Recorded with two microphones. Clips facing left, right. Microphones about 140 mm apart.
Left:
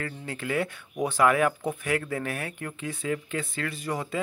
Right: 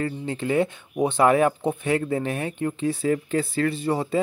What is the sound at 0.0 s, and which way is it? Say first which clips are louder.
Speech: right 7 dB; 25° right (ahead or behind).